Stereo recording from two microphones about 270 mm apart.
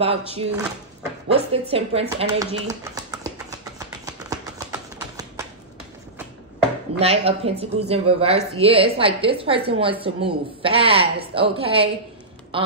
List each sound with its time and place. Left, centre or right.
0.0 s a woman's voice: right
1.3 s a sound: right
7.0 s a woman's voice: right
12.5 s quack: centre